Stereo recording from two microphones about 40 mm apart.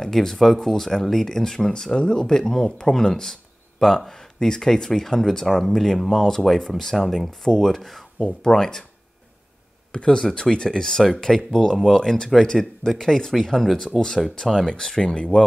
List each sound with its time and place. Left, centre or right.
0.0 s speech: centre
8.3 s speech: centre
10.0 s speech: centre